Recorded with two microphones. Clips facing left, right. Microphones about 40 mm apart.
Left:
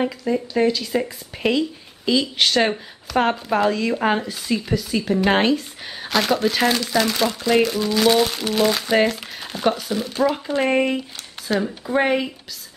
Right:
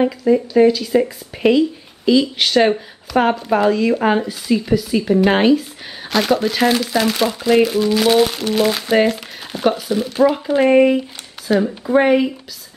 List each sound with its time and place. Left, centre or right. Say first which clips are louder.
0.0 s speech: right 7 dB; centre